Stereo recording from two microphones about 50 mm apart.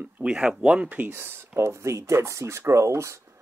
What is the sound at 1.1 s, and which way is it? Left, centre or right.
Speech, right.